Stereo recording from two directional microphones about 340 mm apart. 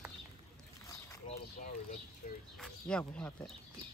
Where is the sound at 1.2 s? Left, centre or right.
Left.